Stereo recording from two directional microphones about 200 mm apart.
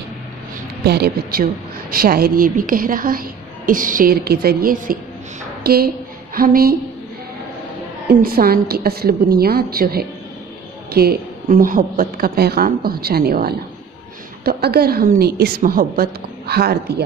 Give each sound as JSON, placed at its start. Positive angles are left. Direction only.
{"t": 0.8, "sound": "a woman's voice", "side_deg": -55}
{"t": 8.1, "sound": "a woman's voice", "side_deg": -50}